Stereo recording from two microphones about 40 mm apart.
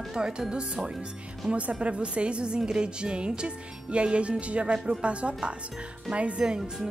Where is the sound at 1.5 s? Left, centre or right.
Right.